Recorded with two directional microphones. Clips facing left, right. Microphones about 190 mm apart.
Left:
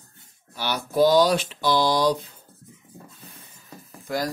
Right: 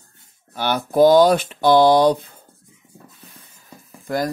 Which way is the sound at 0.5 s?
50° right (ahead or behind).